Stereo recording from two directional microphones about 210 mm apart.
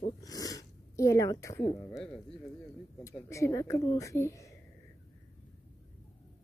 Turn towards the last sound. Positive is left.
turn(degrees=15)  # may be behind; listen again after turning